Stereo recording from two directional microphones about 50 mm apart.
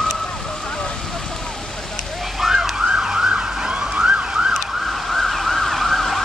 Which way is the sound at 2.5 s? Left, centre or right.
Centre.